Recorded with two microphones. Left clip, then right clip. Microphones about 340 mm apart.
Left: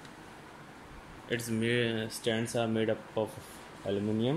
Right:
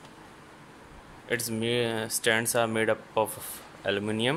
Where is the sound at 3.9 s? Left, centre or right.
Right.